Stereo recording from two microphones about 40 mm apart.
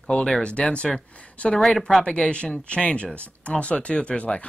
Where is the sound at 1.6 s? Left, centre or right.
Centre.